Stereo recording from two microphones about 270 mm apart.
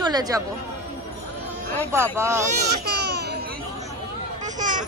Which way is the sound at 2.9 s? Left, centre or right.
Right.